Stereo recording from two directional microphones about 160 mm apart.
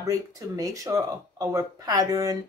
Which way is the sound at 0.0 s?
20° right (ahead or behind).